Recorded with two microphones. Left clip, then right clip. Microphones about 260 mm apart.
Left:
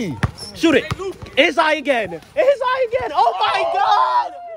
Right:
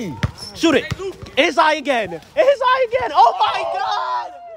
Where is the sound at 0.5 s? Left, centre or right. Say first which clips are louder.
Even; centre.